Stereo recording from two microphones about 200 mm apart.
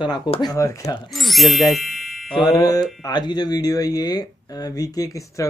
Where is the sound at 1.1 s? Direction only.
Centre (ahead or behind).